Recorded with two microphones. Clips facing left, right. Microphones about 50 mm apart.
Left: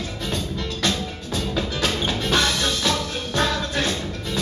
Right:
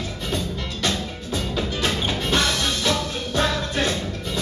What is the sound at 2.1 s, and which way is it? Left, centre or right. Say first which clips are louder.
Music: left 1 dB; right.